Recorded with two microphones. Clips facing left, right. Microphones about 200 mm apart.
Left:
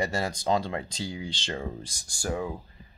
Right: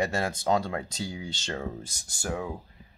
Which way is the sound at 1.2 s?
10° left (ahead or behind).